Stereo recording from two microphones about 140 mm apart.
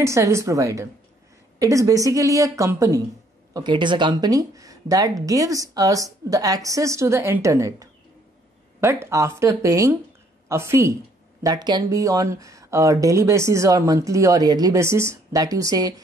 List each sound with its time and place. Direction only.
0.0 s speech: 20° right (ahead or behind)
3.5 s speech: 35° right (ahead or behind)
11.4 s speech: 30° right (ahead or behind)